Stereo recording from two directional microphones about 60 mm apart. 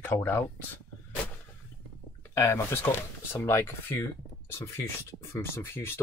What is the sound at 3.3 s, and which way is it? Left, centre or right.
Speech, left.